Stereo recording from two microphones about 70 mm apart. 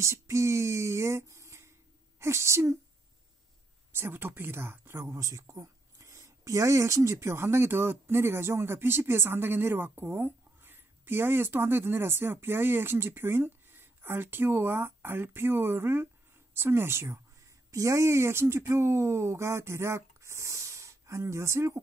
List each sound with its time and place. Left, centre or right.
0.0 s speech: right
3.9 s speech: right
5.0 s speech: right
17.6 s speech: right